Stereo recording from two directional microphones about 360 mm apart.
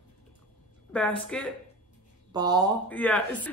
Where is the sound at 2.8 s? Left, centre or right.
Centre.